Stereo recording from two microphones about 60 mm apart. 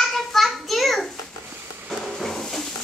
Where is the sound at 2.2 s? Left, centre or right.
Centre.